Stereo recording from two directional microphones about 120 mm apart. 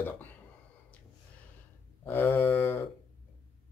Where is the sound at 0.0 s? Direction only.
15° left (ahead or behind).